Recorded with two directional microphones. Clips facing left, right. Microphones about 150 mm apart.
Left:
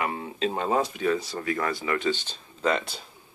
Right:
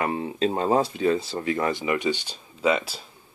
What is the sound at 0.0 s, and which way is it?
Speech, 35° right (ahead or behind).